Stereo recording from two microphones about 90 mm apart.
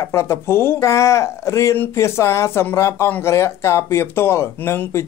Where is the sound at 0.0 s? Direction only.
30° left (ahead or behind).